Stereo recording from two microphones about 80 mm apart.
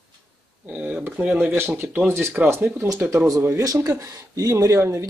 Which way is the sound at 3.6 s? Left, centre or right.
Right.